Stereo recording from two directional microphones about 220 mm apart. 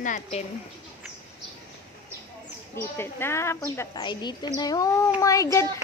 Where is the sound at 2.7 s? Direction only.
10° left (ahead or behind).